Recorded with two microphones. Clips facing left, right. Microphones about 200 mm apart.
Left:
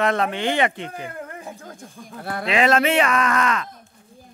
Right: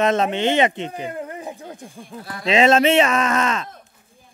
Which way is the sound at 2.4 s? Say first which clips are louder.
Right 4 dB; 25° right (ahead or behind).